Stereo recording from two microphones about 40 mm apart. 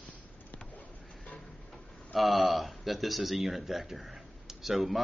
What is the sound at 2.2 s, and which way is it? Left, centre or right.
Speech, centre.